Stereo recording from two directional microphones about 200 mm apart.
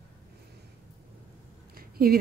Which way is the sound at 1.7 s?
50° right (ahead or behind).